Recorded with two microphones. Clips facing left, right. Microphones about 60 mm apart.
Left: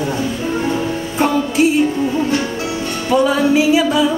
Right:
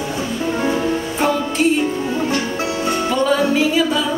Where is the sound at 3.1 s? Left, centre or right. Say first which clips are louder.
Left 5 dB; centre.